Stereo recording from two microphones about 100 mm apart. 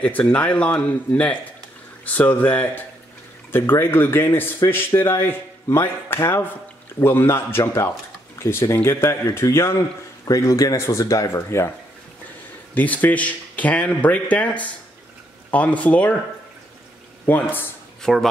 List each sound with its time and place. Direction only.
0.0 s a man's voice: 15° left (ahead or behind)
12.7 s speech: 15° left (ahead or behind)
17.3 s a man's voice: 20° left (ahead or behind)
18.0 s speech: 5° left (ahead or behind)